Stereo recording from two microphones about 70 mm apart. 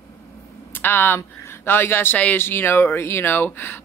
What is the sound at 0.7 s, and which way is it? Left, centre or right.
Speech, left.